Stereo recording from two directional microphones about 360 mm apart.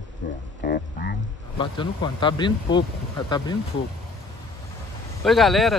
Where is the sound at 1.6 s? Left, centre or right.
Centre.